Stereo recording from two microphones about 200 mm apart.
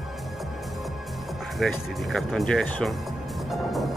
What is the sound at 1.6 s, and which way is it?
Speech, centre (ahead or behind).